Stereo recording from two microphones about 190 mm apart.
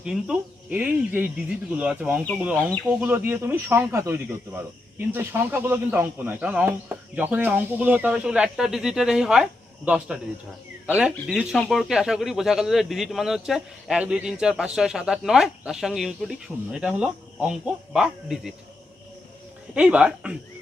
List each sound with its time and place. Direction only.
0.0 s speech: 5° right (ahead or behind)
19.7 s speech: 5° right (ahead or behind)